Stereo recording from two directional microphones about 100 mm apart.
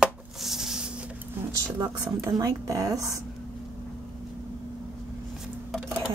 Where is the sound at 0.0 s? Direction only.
5° right (ahead or behind).